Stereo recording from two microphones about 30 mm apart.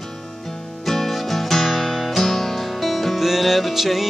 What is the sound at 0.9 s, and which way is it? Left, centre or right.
Music, centre.